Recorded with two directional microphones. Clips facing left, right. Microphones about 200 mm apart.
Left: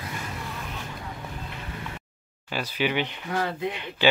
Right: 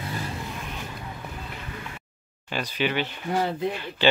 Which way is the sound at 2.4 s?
5° left (ahead or behind).